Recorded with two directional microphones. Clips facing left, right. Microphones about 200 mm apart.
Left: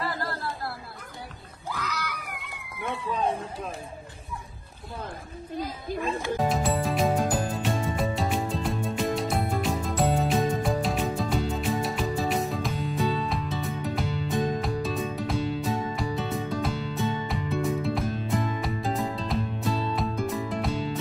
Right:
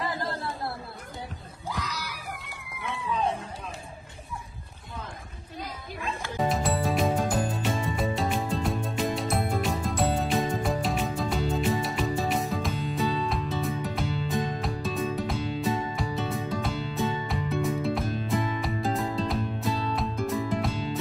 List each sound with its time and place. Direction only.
0.0 s chatter: 20° right (ahead or behind)
1.7 s screaming: 10° right (ahead or behind)
6.3 s music: centre (ahead or behind)